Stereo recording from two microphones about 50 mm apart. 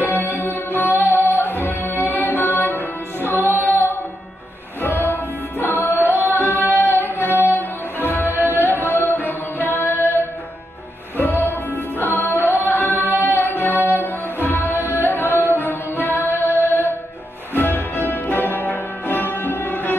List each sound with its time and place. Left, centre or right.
0.0 s music: left
12.0 s music: left